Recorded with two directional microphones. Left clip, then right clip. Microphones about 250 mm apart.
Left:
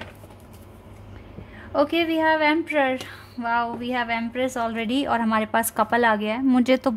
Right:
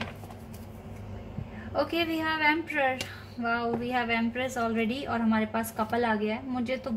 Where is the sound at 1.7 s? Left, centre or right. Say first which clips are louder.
Left 7 dB; left.